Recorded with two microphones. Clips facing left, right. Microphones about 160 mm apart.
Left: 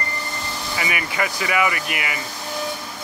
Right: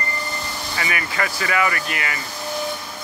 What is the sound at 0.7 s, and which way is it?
Speech, 15° left (ahead or behind).